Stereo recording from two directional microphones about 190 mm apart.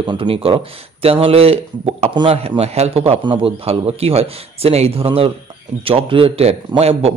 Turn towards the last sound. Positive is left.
turn(degrees=-30)  # may be behind; listen again after turning